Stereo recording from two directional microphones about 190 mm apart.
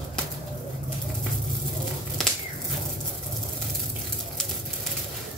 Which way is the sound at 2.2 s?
Centre (ahead or behind).